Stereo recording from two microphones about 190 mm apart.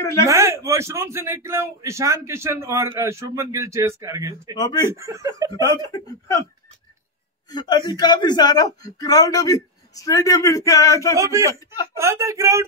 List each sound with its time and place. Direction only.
0.0 s a man's voice: 15° left (ahead or behind)
0.3 s a man's voice: 15° right (ahead or behind)
4.6 s a man's voice: 20° left (ahead or behind)
4.8 s a man's voice: 15° right (ahead or behind)
5.6 s a man's voice: 20° left (ahead or behind)
7.5 s a man's voice: 20° left (ahead or behind)
11.1 s a man's voice: 15° right (ahead or behind)